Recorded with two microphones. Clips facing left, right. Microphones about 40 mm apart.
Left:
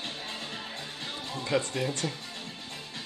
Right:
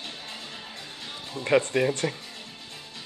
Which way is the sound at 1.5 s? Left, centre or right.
Right.